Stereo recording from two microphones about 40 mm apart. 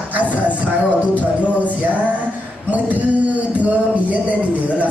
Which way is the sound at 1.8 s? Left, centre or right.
Right.